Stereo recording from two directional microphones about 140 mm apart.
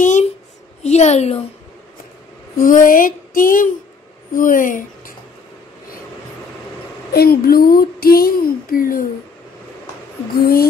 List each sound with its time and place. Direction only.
0.0 s a sound: 60° left (ahead or behind)
0.8 s a woman's voice: 55° left (ahead or behind)
2.5 s speech: 75° left (ahead or behind)
7.2 s speech: 90° left
10.3 s speech: 90° left